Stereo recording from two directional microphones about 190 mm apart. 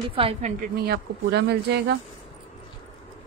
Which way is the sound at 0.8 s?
60° right (ahead or behind).